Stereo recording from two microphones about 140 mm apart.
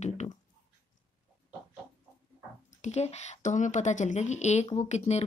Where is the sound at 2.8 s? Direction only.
50° left (ahead or behind).